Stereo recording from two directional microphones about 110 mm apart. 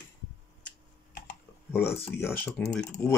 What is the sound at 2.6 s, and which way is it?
Speech, 10° left (ahead or behind).